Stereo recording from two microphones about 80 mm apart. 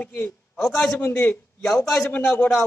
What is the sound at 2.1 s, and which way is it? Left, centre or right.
Speech, centre.